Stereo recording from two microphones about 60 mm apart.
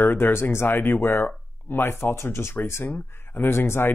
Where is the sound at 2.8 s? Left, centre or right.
Left.